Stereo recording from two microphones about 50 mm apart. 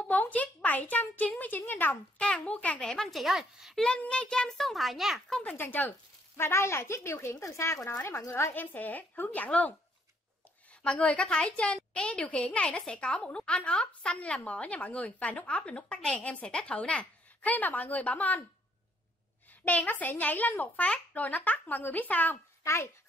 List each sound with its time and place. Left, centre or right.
0.0 s speech: left
2.1 s a woman's voice: left
2.9 s speech: centre
4.1 s a child's voice: centre
4.6 s speech: centre
5.6 s a woman's voice: left
6.3 s speech: left
8.0 s speech: left
8.5 s a woman's voice: left
10.7 s a woman's voice: left
19.6 s a woman's voice: left
22.6 s a child's voice: left